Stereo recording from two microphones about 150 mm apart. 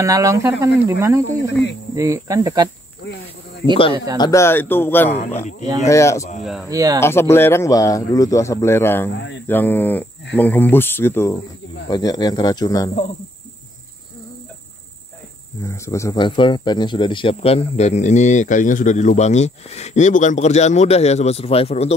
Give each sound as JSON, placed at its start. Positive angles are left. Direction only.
{"t": 0.0, "sound": "speech", "side_deg": -20}
{"t": 3.9, "sound": "speech", "side_deg": -25}
{"t": 4.2, "sound": "speech", "side_deg": 20}
{"t": 6.7, "sound": "speech", "side_deg": -25}
{"t": 7.0, "sound": "speech", "side_deg": 15}
{"t": 11.9, "sound": "speech", "side_deg": 25}
{"t": 15.6, "sound": "speech", "side_deg": 20}
{"t": 16.2, "sound": "speech", "side_deg": 30}